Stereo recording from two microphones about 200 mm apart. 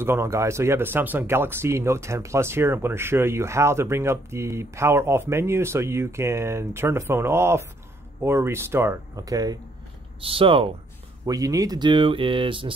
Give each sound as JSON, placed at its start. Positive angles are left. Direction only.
{"t": 0.0, "sound": "speech", "side_deg": -10}